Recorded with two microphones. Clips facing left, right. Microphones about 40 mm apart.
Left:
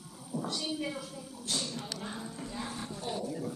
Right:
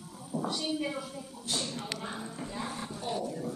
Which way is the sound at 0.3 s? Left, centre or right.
Centre.